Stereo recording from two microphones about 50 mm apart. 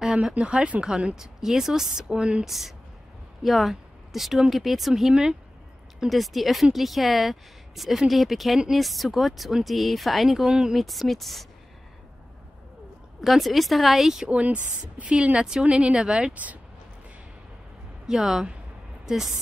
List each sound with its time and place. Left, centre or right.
0.0 s a sound: centre
0.3 s speech: right
2.4 s speech: centre
6.0 s speech: centre
10.8 s speech: centre
13.2 s speech: centre
14.2 s speech: right
18.0 s speech: centre